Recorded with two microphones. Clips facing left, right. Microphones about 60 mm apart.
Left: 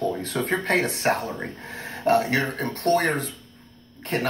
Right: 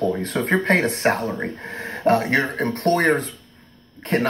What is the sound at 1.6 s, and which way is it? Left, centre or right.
Speech, right.